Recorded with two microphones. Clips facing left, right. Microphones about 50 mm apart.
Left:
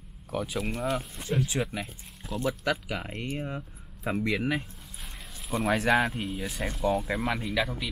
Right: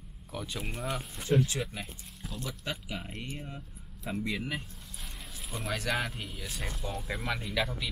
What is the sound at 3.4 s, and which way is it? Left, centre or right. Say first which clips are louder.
Speech: left 8 dB; left.